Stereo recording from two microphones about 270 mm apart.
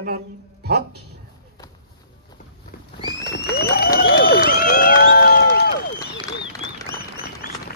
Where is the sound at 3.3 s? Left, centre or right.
Left.